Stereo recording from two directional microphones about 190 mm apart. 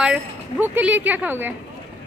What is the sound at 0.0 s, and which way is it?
Music, 5° right (ahead or behind).